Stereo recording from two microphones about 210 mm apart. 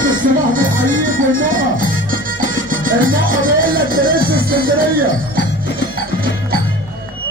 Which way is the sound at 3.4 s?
45° right (ahead or behind).